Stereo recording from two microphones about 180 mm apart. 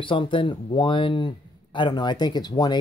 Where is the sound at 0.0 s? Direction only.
30° left (ahead or behind).